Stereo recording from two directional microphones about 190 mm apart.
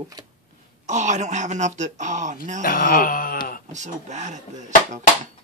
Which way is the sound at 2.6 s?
50° left (ahead or behind).